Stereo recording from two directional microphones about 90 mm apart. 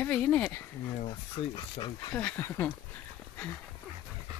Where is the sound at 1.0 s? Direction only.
65° left (ahead or behind).